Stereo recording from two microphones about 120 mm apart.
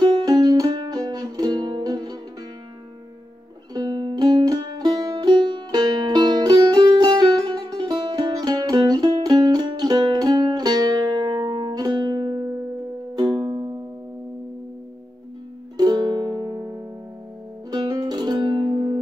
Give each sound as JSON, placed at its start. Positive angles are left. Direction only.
{"t": 0.0, "sound": "music", "side_deg": -35}
{"t": 3.7, "sound": "music", "side_deg": -35}
{"t": 15.8, "sound": "music", "side_deg": -35}